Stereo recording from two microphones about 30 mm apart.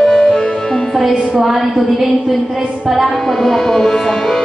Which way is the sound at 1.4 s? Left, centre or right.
Centre.